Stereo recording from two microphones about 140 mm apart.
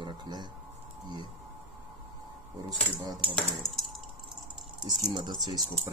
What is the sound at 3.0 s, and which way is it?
Speech, 30° right (ahead or behind).